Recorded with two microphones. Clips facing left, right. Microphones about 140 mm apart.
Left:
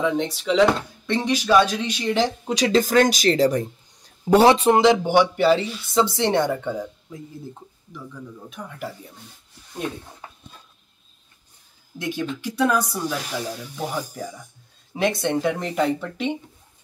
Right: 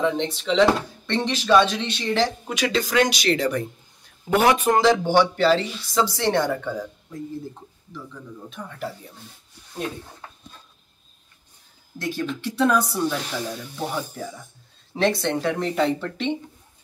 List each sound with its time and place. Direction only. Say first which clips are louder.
0.0 s speech: left 1 dB; 10° left (ahead or behind)
2.4 s speech: left 5 dB; 35° left (ahead or behind)
4.9 s speech: left 1 dB; 15° left (ahead or behind)
8.5 s speech: right 2 dB; 10° left (ahead or behind)
10.2 s a sound: left 1 dB; 10° left (ahead or behind)
12.0 s speech: even; 15° left (ahead or behind)